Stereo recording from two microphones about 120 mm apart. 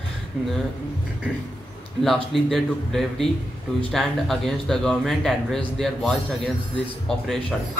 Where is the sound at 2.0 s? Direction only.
Centre (ahead or behind).